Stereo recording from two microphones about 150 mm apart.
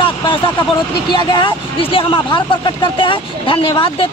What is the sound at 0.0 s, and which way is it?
Speech, 35° left (ahead or behind).